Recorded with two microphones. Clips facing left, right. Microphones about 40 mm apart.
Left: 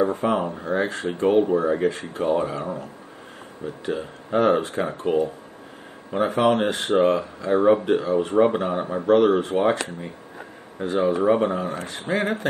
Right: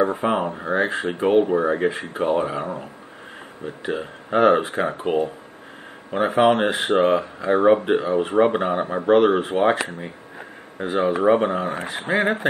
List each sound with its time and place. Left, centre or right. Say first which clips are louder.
0.0 s speech: right 1 dB; centre